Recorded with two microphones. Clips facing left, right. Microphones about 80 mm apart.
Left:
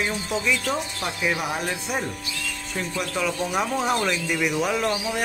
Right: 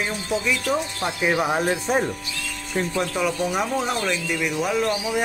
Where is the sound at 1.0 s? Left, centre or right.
Right.